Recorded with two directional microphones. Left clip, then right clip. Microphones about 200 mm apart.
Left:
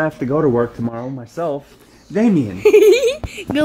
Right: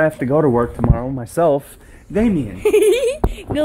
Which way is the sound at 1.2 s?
40° right (ahead or behind).